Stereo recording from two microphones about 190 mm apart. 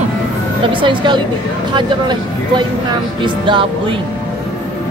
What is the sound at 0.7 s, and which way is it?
Speech, 25° right (ahead or behind).